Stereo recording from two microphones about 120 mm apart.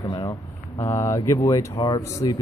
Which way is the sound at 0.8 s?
25° left (ahead or behind).